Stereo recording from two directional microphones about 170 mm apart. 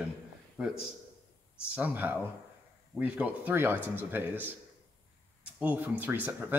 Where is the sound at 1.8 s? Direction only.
10° right (ahead or behind).